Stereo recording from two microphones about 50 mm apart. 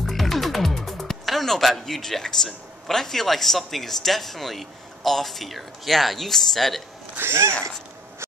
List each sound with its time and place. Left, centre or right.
0.0 s speech: centre
7.2 s speech: right